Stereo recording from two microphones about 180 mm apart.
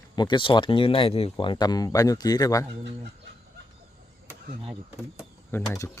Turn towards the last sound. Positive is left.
turn(degrees=20)  # may be behind; listen again after turning